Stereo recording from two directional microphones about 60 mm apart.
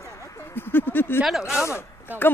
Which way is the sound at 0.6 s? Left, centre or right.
Left.